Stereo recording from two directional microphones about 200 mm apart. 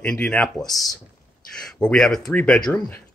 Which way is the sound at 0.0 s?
5° left (ahead or behind).